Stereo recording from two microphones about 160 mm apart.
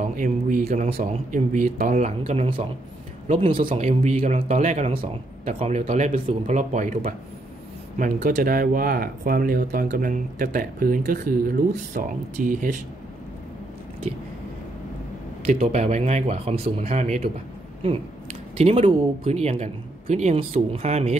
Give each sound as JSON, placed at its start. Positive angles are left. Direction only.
{"t": 0.0, "sound": "speech", "side_deg": -55}
{"t": 15.4, "sound": "speech", "side_deg": -45}
{"t": 18.6, "sound": "speech", "side_deg": -40}